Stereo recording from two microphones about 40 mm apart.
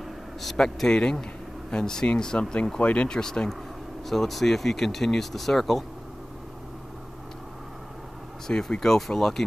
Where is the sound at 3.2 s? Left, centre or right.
Centre.